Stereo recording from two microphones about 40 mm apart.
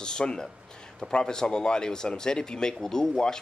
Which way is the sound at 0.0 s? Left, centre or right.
Left.